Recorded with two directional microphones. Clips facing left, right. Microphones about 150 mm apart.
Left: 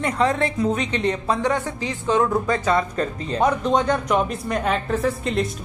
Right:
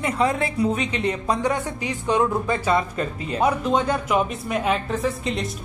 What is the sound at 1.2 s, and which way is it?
Speech, 15° right (ahead or behind).